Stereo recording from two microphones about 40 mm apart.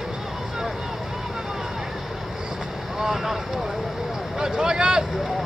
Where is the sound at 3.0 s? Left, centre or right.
Centre.